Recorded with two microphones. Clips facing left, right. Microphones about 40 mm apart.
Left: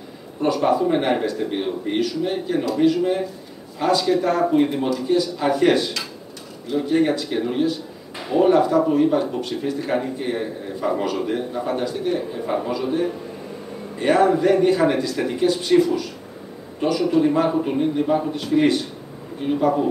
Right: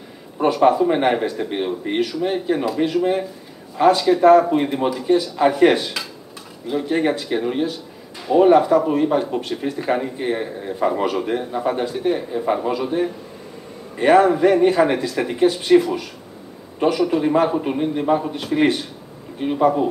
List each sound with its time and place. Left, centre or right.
0.4 s speech: centre